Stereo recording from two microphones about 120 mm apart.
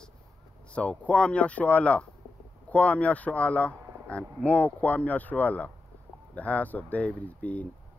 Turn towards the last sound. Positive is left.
turn(degrees=10)  # may be behind; listen again after turning